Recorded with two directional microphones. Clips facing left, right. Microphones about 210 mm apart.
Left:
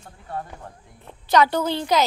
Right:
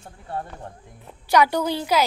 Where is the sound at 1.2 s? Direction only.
10° right (ahead or behind).